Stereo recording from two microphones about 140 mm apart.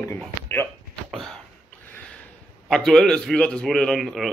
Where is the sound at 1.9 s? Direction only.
10° left (ahead or behind).